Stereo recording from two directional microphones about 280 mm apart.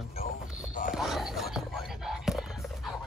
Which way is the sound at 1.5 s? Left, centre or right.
Centre.